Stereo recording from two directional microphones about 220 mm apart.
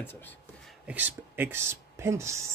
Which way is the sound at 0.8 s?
10° right (ahead or behind).